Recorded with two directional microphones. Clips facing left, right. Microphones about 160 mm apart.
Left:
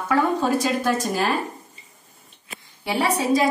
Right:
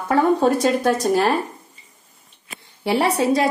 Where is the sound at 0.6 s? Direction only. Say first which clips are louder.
Right 4 dB; 65° right (ahead or behind).